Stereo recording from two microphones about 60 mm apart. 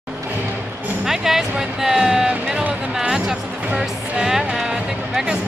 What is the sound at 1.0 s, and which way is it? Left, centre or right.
Speech, centre.